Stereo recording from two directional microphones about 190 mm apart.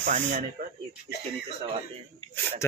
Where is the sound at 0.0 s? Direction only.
40° right (ahead or behind).